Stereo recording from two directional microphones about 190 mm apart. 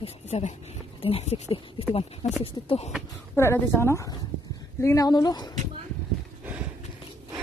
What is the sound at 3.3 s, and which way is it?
A woman's voice, 15° left (ahead or behind).